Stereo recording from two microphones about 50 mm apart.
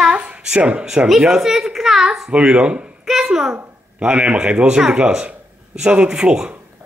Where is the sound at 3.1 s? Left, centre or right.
Centre.